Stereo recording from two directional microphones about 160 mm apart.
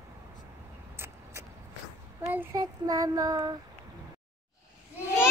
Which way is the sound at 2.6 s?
25° right (ahead or behind).